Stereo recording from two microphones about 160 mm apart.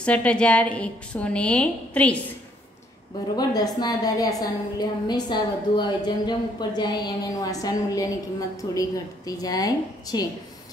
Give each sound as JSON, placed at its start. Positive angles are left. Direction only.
{"t": 0.0, "sound": "a woman's voice", "side_deg": 5}
{"t": 3.3, "sound": "a woman's voice", "side_deg": 25}